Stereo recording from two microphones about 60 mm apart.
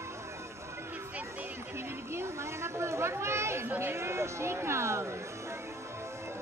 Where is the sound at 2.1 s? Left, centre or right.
Right.